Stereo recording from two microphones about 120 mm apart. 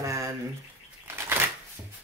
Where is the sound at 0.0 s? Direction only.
25° right (ahead or behind).